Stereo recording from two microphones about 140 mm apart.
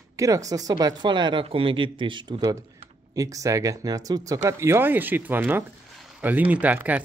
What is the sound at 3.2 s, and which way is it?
Speech, 25° right (ahead or behind).